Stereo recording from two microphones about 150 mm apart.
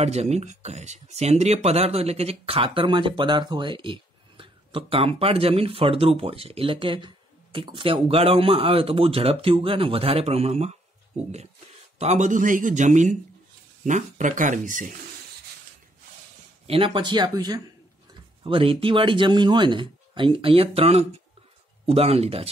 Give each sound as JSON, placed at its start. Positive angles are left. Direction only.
{"t": 0.0, "sound": "speech", "side_deg": -45}
{"t": 16.6, "sound": "a woman's voice", "side_deg": -40}